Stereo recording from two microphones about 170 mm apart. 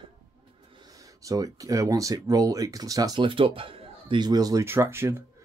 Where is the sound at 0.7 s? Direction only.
25° right (ahead or behind).